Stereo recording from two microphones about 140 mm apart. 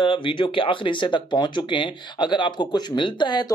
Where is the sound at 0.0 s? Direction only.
35° left (ahead or behind).